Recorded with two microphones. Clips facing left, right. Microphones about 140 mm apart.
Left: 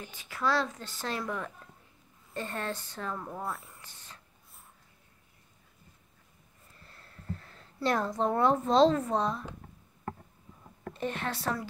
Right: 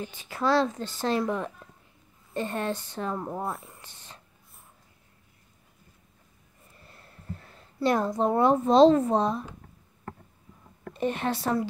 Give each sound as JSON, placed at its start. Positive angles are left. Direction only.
{"t": 0.0, "sound": "speech", "side_deg": -30}
{"t": 6.8, "sound": "a sound", "side_deg": -15}
{"t": 7.8, "sound": "a woman's voice", "side_deg": -15}
{"t": 11.0, "sound": "speech", "side_deg": -20}